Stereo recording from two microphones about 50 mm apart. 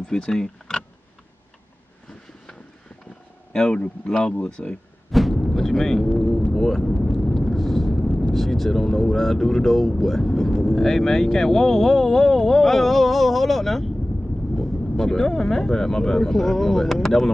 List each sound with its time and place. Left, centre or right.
0.0 s power windows: centre
3.5 s speech: centre
5.3 s a sound: centre
6.1 s speech: centre